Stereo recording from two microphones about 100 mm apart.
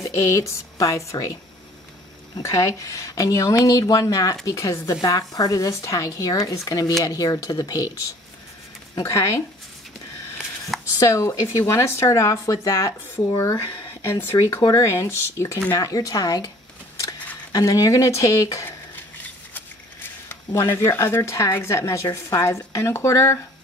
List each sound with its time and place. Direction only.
0.0 s speech: 35° left (ahead or behind)
2.4 s speech: 30° left (ahead or behind)
9.0 s speech: 30° left (ahead or behind)
11.0 s speech: 30° left (ahead or behind)
20.7 s speech: 25° left (ahead or behind)